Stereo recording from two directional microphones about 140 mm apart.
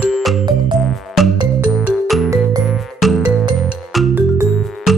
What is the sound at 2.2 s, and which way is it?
Music, 20° right (ahead or behind).